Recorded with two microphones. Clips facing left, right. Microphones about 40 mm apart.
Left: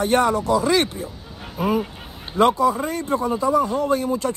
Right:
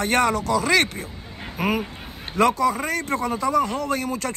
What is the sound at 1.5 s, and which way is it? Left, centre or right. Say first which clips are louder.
Speech: left 2 dB; right.